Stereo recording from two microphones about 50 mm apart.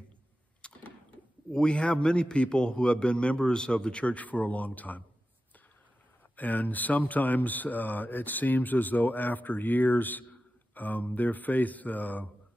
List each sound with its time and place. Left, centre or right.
0.6 s a sound: left
1.5 s a man's voice: centre
6.3 s speech: left